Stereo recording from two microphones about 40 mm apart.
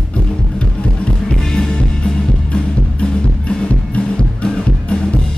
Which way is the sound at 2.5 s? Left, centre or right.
Left.